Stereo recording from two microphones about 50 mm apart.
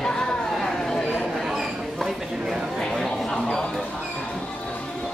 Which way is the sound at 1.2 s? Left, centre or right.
Centre.